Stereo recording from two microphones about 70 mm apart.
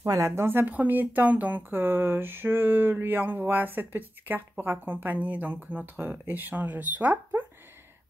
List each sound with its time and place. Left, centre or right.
0.0 s speech: right
0.4 s speech: right